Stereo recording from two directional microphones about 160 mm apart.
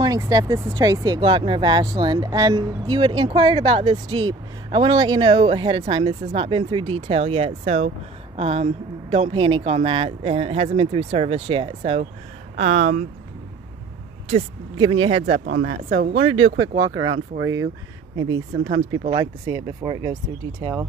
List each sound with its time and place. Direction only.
0.0 s speech: 25° right (ahead or behind)
12.5 s speech: 50° right (ahead or behind)
14.3 s speech: 35° right (ahead or behind)
15.5 s speech: 80° right
16.2 s speech: 30° right (ahead or behind)